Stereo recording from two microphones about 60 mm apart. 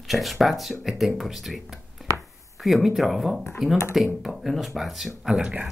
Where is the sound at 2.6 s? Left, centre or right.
Centre.